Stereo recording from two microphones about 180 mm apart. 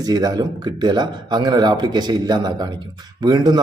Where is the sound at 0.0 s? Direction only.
20° right (ahead or behind).